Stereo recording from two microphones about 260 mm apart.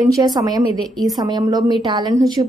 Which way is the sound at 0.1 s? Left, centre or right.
Centre.